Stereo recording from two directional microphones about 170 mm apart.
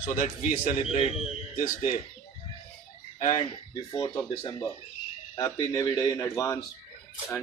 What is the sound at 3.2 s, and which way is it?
A man's voice, 30° left (ahead or behind).